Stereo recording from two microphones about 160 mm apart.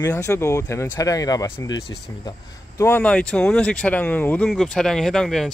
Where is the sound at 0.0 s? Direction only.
15° left (ahead or behind).